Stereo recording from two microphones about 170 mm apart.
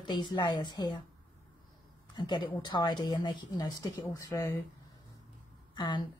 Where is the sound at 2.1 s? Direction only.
25° left (ahead or behind).